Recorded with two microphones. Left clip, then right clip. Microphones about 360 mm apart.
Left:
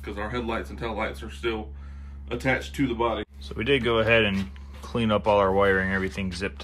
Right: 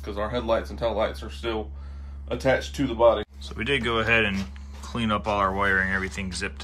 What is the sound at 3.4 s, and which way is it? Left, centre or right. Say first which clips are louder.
Speech: left 2 dB; centre.